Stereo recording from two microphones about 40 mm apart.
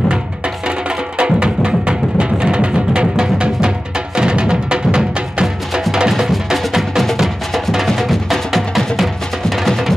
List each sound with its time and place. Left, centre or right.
0.7 s music: right; by 9.9 s centre